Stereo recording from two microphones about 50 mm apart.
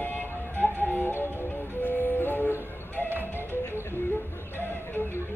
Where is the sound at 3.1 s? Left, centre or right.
Right.